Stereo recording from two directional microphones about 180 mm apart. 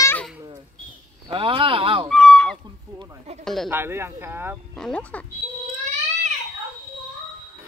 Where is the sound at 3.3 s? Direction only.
35° right (ahead or behind).